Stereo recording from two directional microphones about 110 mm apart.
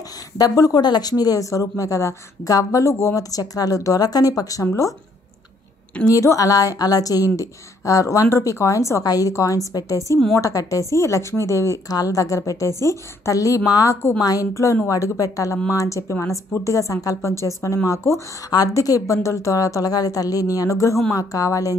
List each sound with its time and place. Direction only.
0.4 s speech: 35° left (ahead or behind)
6.0 s a woman's voice: 30° left (ahead or behind)